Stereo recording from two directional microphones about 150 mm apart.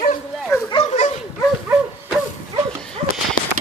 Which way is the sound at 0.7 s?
35° left (ahead or behind).